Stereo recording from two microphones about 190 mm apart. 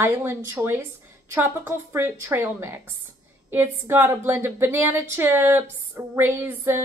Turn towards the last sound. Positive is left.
turn(degrees=-10)  # may be behind; listen again after turning